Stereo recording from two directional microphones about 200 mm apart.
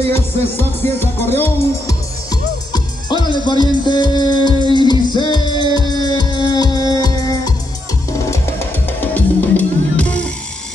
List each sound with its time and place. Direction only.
0.0 s music: 10° left (ahead or behind)
2.7 s music: 20° left (ahead or behind)